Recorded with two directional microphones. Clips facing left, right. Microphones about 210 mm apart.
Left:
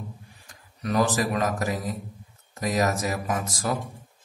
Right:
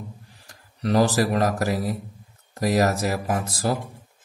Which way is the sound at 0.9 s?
35° right (ahead or behind).